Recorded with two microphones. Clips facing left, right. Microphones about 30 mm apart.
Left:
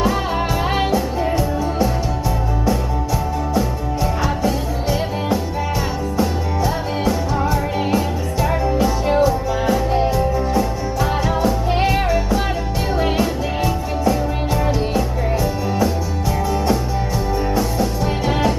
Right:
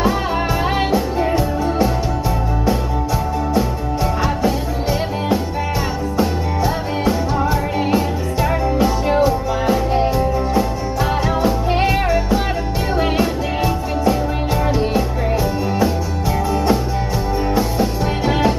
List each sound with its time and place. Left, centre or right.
0.9 s music: centre
6.1 s music: centre
17.6 s music: centre